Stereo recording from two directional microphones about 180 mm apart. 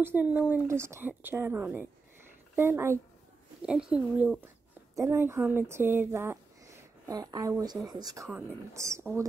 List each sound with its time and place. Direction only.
0.0 s speech: 10° right (ahead or behind)
4.9 s speech: 15° right (ahead or behind)